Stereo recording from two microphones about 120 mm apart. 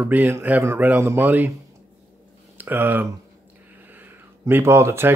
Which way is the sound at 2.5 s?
15° right (ahead or behind).